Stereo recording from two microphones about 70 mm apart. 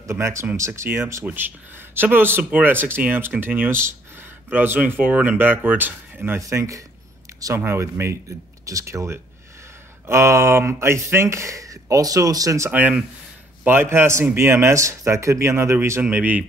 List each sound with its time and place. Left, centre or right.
0.0 s speech: right
6.4 s speech: right
7.5 s speech: right
13.8 s speech: right
16.0 s speech: right